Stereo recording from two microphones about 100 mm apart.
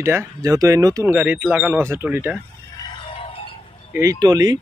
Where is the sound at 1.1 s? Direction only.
15° right (ahead or behind).